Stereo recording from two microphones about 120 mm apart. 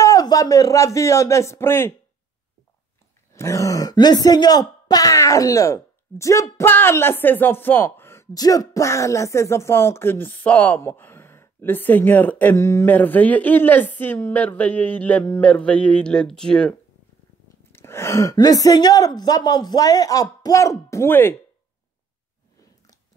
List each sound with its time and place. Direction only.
0.0 s speech: 30° left (ahead or behind)
3.3 s speech: 25° left (ahead or behind); by 16.7 s 5° left (ahead or behind)
17.7 s a woman's voice: 20° left (ahead or behind)